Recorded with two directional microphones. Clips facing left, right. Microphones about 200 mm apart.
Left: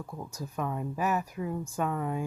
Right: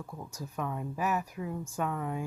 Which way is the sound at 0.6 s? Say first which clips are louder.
Left 2 dB; 40° left (ahead or behind).